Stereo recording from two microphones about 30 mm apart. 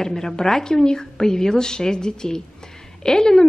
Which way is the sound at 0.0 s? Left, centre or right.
Centre.